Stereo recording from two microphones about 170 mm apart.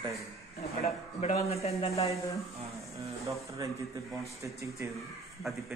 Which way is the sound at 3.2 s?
20° right (ahead or behind).